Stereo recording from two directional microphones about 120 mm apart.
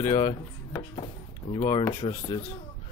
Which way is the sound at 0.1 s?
45° left (ahead or behind).